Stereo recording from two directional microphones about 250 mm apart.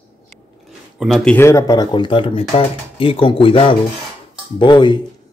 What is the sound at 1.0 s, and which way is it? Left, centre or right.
Speech, centre.